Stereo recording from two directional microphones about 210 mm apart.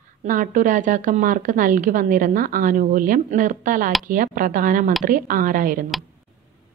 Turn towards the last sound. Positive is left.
turn(degrees=-40)  # may be behind; listen again after turning